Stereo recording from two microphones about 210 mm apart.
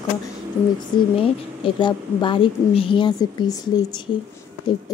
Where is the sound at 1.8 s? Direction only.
20° left (ahead or behind).